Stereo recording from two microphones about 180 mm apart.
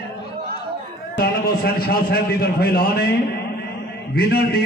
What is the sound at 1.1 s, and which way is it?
A man's voice, 60° left (ahead or behind).